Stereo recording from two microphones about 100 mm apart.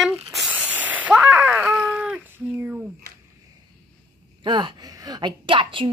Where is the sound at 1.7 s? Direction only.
5° right (ahead or behind).